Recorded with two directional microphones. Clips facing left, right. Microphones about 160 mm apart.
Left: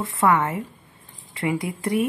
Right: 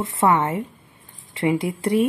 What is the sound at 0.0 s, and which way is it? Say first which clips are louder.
A woman's voice: right 1 dB; 25° right (ahead or behind).